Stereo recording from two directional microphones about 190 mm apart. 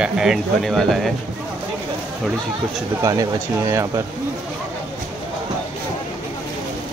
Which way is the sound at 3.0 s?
15° right (ahead or behind).